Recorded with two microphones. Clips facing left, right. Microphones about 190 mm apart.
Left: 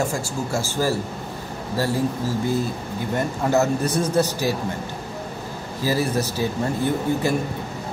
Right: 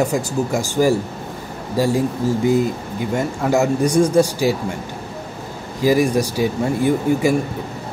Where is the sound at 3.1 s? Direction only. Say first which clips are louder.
Right 2 dB; 10° right (ahead or behind).